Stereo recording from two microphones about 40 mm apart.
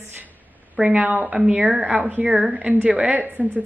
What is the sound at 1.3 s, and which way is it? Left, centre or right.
A woman's voice, right.